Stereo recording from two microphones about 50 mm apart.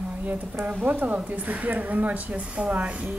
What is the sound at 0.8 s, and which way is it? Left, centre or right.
A woman's voice, right.